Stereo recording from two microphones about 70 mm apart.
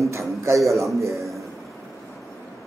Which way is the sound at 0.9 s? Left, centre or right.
Right.